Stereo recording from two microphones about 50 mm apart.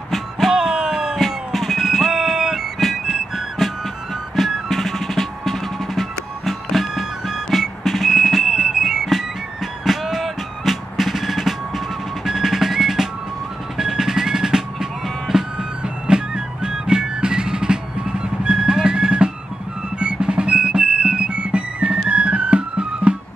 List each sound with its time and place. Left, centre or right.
0.1 s music: centre
0.6 s music: centre
1.1 s music: centre; by 23.1 s right